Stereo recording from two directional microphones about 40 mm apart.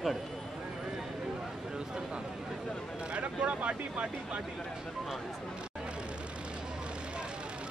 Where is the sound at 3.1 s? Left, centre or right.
Right.